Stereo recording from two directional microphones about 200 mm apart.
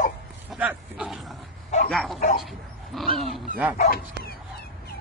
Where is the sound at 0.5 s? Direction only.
5° right (ahead or behind).